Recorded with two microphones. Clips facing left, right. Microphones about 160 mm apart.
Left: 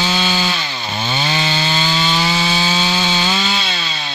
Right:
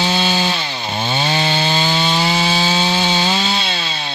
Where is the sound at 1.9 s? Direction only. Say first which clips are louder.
Right 1 dB; 25° right (ahead or behind).